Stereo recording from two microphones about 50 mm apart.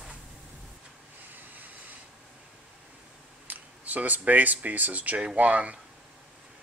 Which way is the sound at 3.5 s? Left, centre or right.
Right.